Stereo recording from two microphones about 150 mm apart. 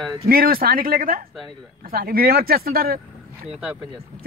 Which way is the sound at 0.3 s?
85° right.